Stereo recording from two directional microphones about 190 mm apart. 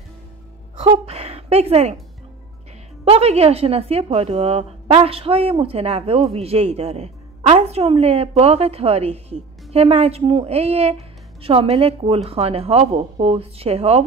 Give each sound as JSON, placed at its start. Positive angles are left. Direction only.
{"t": 0.7, "sound": "a woman's voice", "side_deg": -30}
{"t": 3.1, "sound": "a woman's voice", "side_deg": -35}